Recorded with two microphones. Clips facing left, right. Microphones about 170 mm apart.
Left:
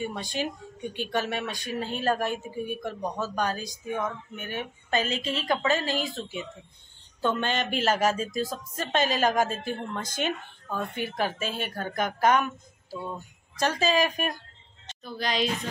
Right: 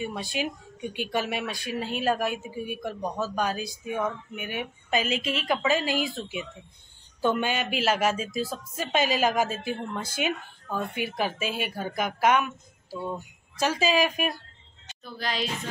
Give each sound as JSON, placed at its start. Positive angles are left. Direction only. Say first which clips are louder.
{"t": 0.0, "sound": "speech", "louder": "even", "side_deg": -10}
{"t": 5.1, "sound": "a woman's voice", "louder": "right 2 dB", "side_deg": 35}
{"t": 5.5, "sound": "a woman's voice", "louder": "right 1 dB", "side_deg": -10}